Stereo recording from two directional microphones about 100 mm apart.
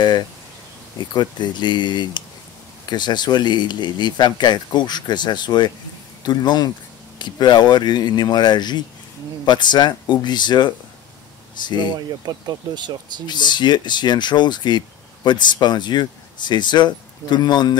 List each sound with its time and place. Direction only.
1.1 s speech: 45° left (ahead or behind)
12.3 s speech: 45° right (ahead or behind)
13.3 s speech: 50° left (ahead or behind)